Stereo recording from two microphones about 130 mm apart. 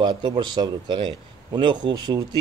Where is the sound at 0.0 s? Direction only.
35° right (ahead or behind).